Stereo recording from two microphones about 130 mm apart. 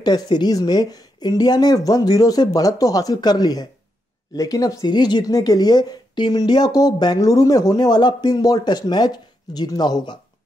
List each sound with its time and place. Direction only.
0.0 s speech: 35° left (ahead or behind)